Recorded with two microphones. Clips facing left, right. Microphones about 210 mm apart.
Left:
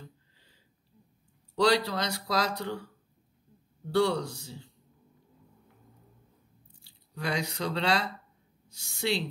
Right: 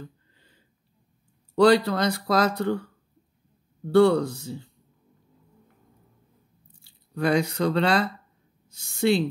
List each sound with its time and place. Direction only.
1.5 s speech: 55° right (ahead or behind)
3.9 s speech: 55° right (ahead or behind)
6.8 s speech: 55° right (ahead or behind)